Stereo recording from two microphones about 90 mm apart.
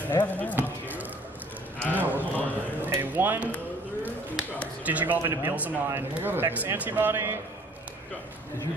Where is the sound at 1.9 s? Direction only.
20° right (ahead or behind).